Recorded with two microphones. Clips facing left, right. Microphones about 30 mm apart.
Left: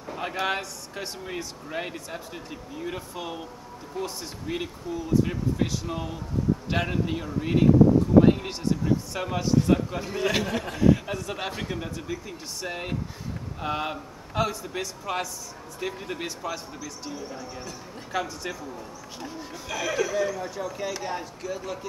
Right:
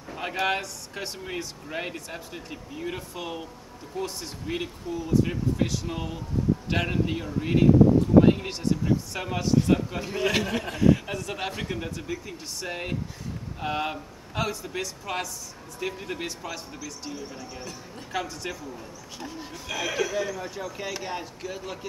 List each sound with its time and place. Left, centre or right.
0.1 s speech: centre